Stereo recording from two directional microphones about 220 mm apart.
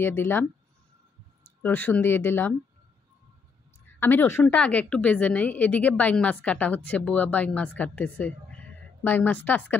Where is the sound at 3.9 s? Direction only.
10° left (ahead or behind).